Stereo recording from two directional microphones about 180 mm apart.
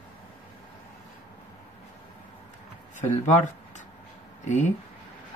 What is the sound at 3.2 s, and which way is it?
Speech, 40° left (ahead or behind).